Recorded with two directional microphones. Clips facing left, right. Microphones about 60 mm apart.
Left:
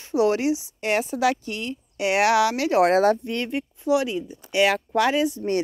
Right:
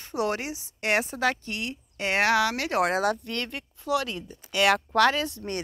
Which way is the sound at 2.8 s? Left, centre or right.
Left.